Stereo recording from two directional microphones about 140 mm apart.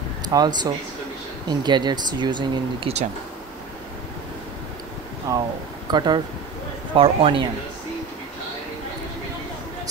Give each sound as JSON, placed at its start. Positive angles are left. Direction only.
{"t": 0.2, "sound": "speech", "side_deg": -30}
{"t": 5.3, "sound": "speech", "side_deg": -25}